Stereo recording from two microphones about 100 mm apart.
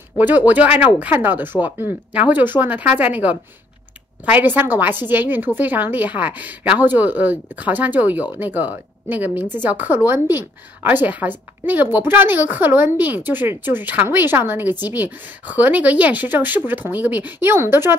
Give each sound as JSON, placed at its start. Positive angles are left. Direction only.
{"t": 0.5, "sound": "a woman's voice", "side_deg": -15}